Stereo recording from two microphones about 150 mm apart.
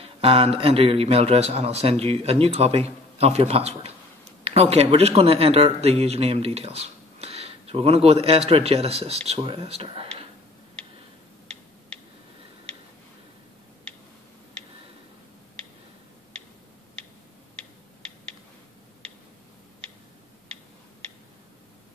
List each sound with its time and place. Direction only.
0.0 s speech: 40° right (ahead or behind)